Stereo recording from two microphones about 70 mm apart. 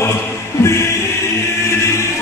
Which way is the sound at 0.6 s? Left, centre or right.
Left.